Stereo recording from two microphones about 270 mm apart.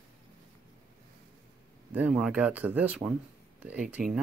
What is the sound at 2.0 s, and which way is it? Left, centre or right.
Speech, centre.